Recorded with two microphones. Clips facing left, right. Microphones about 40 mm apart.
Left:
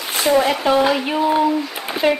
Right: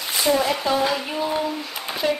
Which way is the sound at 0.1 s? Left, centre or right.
Left.